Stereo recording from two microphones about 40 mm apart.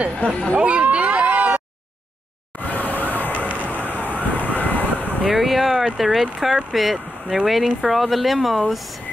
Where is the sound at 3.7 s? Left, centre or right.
Left.